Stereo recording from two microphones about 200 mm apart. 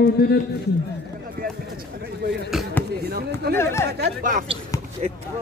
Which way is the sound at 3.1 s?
50° right (ahead or behind).